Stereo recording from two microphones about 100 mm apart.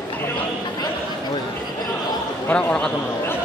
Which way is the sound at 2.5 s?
15° left (ahead or behind).